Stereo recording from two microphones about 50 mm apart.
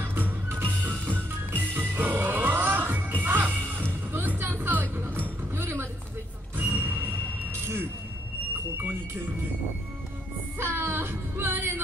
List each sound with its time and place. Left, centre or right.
0.0 s music: right
5.6 s a sound: right
6.5 s music: right
7.6 s vehicle: right
10.6 s music: right